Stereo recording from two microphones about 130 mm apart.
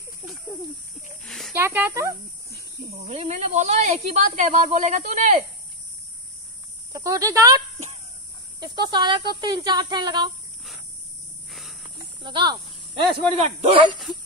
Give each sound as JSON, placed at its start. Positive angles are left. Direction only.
{"t": 1.2, "sound": "a sound", "side_deg": 5}
{"t": 1.5, "sound": "speech", "side_deg": -15}
{"t": 3.1, "sound": "speech", "side_deg": -65}
{"t": 6.9, "sound": "cricket", "side_deg": -25}
{"t": 8.5, "sound": "speech", "side_deg": -35}
{"t": 12.2, "sound": "speech", "side_deg": -35}
{"t": 13.4, "sound": "speech", "side_deg": -50}